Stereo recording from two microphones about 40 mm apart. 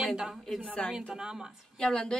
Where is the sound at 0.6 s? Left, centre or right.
Left.